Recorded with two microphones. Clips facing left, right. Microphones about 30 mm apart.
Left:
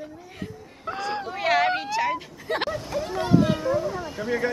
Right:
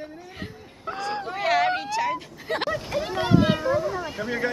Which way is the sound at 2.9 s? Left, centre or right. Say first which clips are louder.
Even; right.